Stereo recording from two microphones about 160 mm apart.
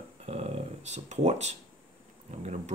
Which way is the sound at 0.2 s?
40° right (ahead or behind).